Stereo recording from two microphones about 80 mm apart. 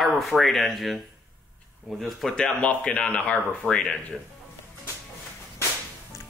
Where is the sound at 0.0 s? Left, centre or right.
Centre.